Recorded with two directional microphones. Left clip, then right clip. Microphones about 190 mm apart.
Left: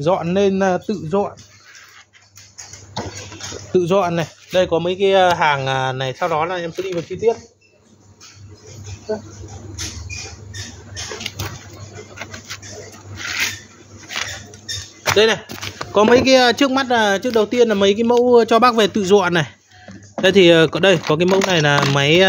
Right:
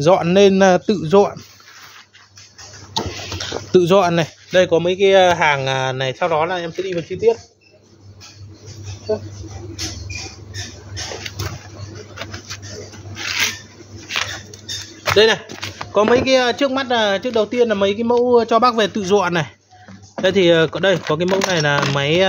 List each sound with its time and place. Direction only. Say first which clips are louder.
0.0 s a man's voice: right 5 dB; 30° right (ahead or behind); by 1.3 s 45° right (ahead or behind)
3.7 s speech: right 3 dB; 20° right (ahead or behind)
4.6 s speech: right 2 dB; 5° right (ahead or behind)
6.7 s speech: right 1 dB; 20° left (ahead or behind)
11.4 s pigeon: even; 25° left (ahead or behind)
12.3 s a sound: even; 10° left (ahead or behind)
14.0 s a sound: right 3 dB; 5° right (ahead or behind)
15.0 s speech: right 1 dB; 5° left (ahead or behind)
15.9 s speech: left 2 dB; 35° left (ahead or behind)